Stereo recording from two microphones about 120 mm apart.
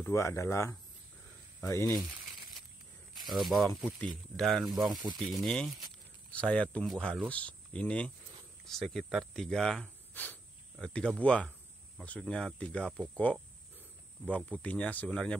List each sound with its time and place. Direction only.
0.0 s speech: 25° left (ahead or behind)
3.3 s speech: centre (ahead or behind)
4.9 s speech: 40° right (ahead or behind)
5.3 s speech: 5° left (ahead or behind)
10.1 s speech: 15° left (ahead or behind)